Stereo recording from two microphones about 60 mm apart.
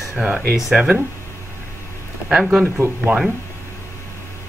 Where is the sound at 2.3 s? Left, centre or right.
Centre.